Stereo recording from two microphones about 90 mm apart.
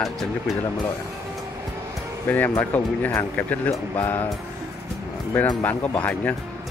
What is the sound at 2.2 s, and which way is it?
Speech, 20° left (ahead or behind).